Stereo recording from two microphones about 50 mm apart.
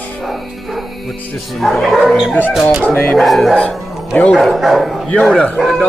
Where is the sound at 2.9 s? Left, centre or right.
Left.